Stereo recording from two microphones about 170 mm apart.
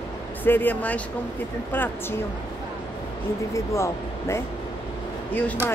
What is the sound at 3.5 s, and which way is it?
Speech, 15° left (ahead or behind).